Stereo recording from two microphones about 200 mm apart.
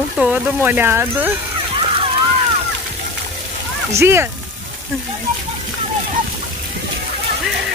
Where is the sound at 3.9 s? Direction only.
15° right (ahead or behind).